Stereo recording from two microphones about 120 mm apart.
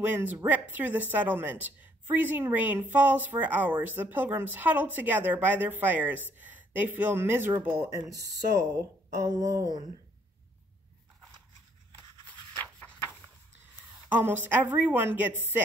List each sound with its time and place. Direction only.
0.0 s a woman's voice: 15° right (ahead or behind)
7.9 s a woman's voice: 30° right (ahead or behind)
14.1 s a woman's voice: 15° right (ahead or behind)